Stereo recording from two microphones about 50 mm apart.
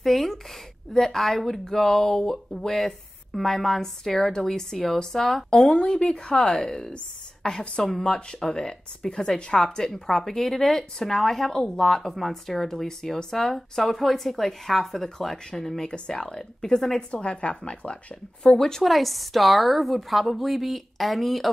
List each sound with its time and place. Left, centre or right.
0.0 s a sound: centre
0.9 s speech: centre
5.8 s speech: centre
17.1 s speech: left; by 21.5 s centre